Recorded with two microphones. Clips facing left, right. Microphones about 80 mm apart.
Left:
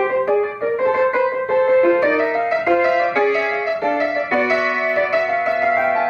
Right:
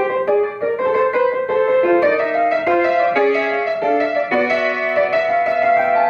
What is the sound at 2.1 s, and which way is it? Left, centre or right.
Music, centre.